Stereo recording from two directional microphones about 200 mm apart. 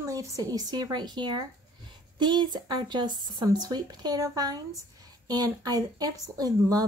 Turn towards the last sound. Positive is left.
turn(degrees=-20)  # may be behind; listen again after turning